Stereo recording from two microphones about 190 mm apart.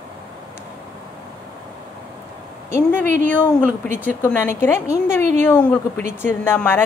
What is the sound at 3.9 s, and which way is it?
A woman's voice, 10° left (ahead or behind).